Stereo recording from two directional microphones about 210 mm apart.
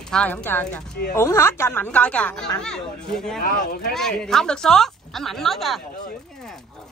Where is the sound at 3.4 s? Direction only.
45° left (ahead or behind).